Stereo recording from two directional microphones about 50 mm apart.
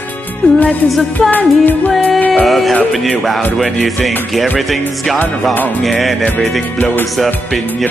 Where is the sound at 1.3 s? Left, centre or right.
Left.